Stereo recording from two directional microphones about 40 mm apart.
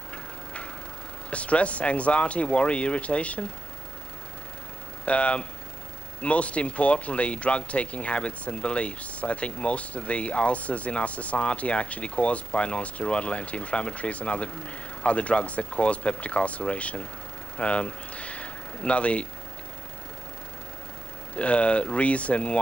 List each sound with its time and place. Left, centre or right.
0.1 s a sound: left
1.3 s speech: left
5.0 s speech: left
21.4 s speech: left